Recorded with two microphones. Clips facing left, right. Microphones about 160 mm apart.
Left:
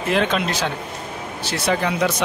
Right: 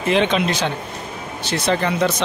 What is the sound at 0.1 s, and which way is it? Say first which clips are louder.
Speech: right 3 dB; centre (ahead or behind).